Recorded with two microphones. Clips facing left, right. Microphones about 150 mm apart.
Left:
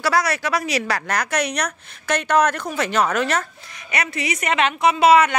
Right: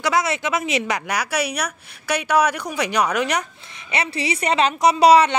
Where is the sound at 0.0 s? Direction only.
20° right (ahead or behind).